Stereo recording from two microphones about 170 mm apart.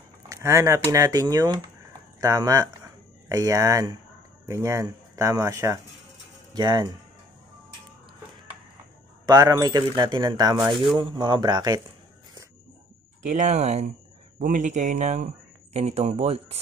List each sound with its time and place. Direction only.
0.3 s speech: 15° right (ahead or behind)
9.2 s speech: 25° right (ahead or behind)
13.2 s speech: 45° right (ahead or behind)